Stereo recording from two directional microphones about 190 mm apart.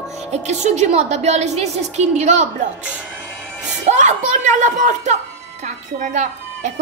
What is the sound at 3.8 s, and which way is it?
A woman's voice, 40° right (ahead or behind).